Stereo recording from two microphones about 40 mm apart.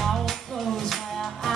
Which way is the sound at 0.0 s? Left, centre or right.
Centre.